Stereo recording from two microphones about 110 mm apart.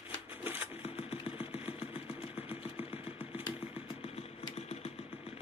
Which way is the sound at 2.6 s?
60° left (ahead or behind).